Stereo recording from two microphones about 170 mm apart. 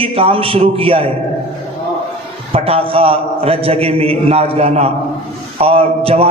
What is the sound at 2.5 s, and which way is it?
A man's voice, 35° right (ahead or behind).